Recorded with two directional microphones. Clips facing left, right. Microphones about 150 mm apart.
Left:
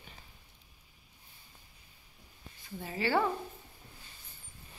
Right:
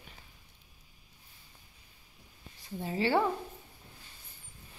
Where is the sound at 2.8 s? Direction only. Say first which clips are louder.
Right 2 dB; 25° right (ahead or behind).